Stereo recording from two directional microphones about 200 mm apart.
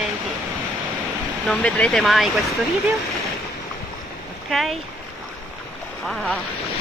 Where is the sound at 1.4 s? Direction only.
5° left (ahead or behind).